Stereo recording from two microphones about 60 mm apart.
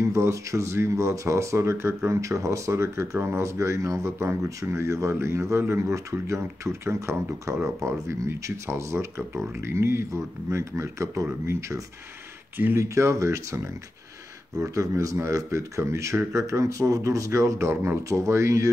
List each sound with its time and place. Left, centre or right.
0.0 s speech: right
12.5 s speech: right
12.8 s speech: right
14.8 s speech: right